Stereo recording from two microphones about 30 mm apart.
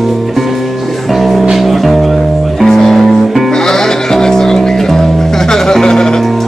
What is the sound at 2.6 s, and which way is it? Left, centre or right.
Music, centre.